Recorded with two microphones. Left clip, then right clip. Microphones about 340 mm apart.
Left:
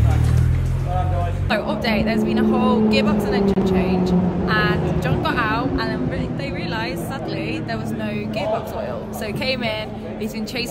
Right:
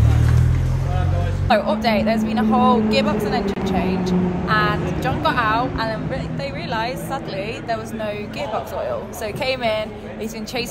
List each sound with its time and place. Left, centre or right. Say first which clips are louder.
1.5 s speech: right 4 dB; centre
9.4 s speech: right 3 dB; centre